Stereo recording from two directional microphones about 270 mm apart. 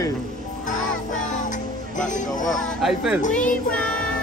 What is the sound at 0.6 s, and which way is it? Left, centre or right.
Music, left.